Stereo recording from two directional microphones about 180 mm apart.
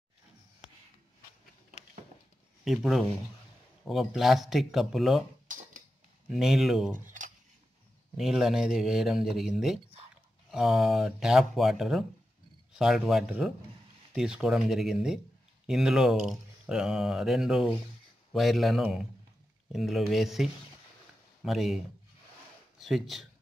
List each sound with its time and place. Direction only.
2.6 s speech: centre (ahead or behind)
6.2 s speech: centre (ahead or behind)
7.1 s cutlery: 45° right (ahead or behind)
8.2 s speech: centre (ahead or behind)
21.5 s speech: centre (ahead or behind)
22.8 s speech: centre (ahead or behind)